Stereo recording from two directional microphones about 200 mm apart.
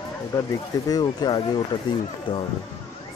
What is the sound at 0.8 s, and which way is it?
Speech, 20° left (ahead or behind).